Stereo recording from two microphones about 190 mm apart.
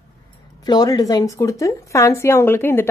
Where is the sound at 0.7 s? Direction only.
20° left (ahead or behind).